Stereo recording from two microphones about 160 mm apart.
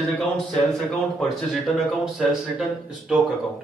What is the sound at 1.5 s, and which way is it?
A man's voice, 5° right (ahead or behind).